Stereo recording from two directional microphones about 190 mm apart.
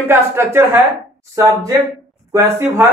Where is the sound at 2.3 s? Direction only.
20° right (ahead or behind).